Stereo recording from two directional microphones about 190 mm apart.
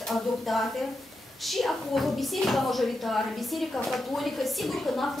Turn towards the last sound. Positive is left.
turn(degrees=0)  # may be behind; listen again after turning